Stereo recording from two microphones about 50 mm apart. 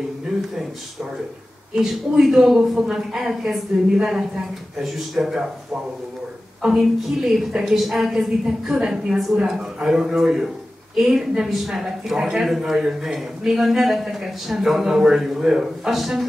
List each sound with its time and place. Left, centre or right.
1.8 s a woman's voice: centre
6.6 s a woman's voice: centre